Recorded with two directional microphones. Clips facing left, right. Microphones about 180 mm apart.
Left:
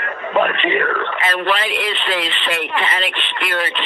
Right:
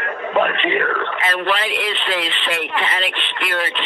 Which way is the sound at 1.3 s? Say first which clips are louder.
Left 1 dB; 85° left.